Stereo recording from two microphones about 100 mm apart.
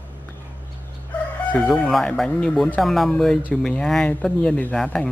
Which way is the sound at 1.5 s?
10° left (ahead or behind).